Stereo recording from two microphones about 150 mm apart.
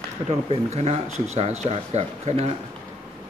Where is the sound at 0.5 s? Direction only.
45° right (ahead or behind).